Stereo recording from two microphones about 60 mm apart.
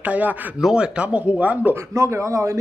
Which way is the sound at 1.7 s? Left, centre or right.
Right.